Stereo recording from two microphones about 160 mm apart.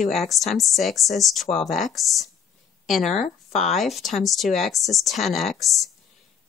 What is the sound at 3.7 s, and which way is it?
Speech, centre (ahead or behind).